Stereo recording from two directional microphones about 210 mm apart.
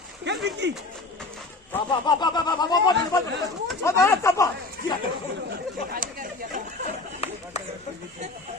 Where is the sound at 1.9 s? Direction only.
20° left (ahead or behind).